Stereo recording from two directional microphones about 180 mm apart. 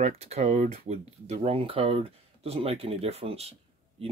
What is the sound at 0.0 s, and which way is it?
Speech, 35° right (ahead or behind).